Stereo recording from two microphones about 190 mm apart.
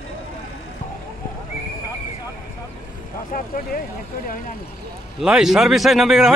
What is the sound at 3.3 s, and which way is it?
Speech, 45° left (ahead or behind).